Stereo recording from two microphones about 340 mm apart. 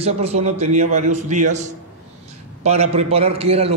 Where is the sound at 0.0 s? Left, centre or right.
Centre.